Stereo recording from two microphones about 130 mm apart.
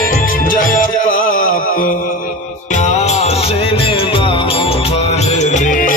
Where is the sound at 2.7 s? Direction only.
60° left (ahead or behind); by 6.0 s 90° left.